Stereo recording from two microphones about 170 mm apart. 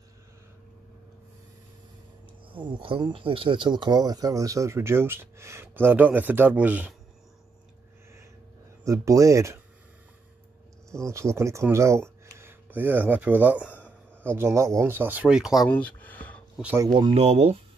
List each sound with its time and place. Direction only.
2.5 s speech: 30° right (ahead or behind); by 7.0 s 10° right (ahead or behind)
8.8 s speech: 20° right (ahead or behind)
11.1 s speech: 15° right (ahead or behind)
15.7 s a sound: 10° left (ahead or behind)
16.7 s speech: 25° right (ahead or behind)
17.2 s speech: 40° right (ahead or behind)